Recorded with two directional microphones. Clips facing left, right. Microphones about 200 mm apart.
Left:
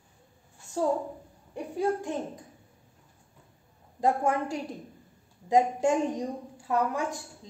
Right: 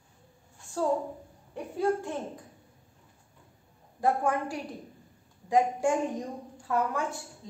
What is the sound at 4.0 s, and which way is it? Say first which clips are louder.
A woman's voice: left 1 dB; 20° left (ahead or behind).